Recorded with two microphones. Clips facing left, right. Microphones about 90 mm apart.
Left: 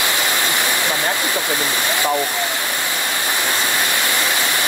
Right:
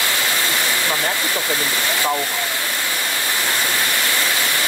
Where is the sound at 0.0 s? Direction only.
20° left (ahead or behind).